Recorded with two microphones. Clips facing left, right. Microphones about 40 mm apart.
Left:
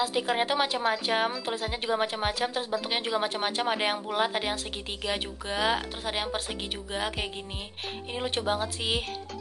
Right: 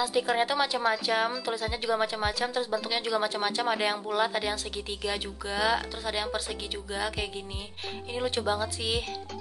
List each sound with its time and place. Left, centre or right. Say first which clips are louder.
0.0 s speech: right 1 dB; left
8.2 s speech: right 1 dB; left